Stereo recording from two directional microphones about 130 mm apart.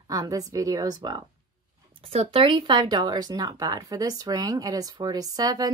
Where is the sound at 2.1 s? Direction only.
45° right (ahead or behind).